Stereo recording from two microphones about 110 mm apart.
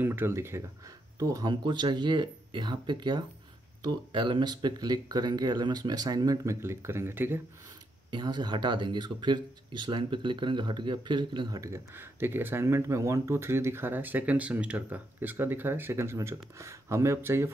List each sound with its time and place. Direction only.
0.0 s speech: 20° right (ahead or behind)
8.1 s speech: 40° right (ahead or behind)
11.6 s speech: 20° right (ahead or behind)